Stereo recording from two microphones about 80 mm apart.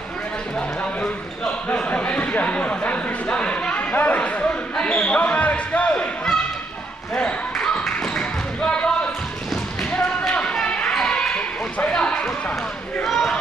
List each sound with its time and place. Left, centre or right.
0.6 s basketball bounce: centre
7.5 s tap: centre
8.0 s basketball bounce: centre
13.0 s a sound: centre